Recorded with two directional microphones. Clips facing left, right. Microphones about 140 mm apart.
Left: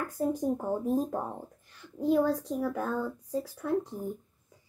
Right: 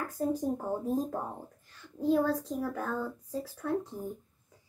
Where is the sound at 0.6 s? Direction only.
20° left (ahead or behind).